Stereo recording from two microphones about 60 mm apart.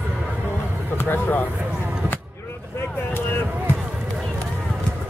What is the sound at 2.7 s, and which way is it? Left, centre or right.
Vehicle, left.